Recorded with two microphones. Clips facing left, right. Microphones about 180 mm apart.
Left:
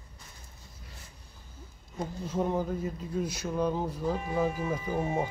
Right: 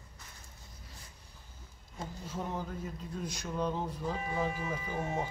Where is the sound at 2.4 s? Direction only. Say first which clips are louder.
Left 9 dB; 50° left (ahead or behind).